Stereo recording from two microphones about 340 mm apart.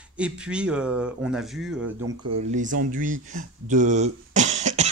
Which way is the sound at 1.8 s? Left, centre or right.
Right.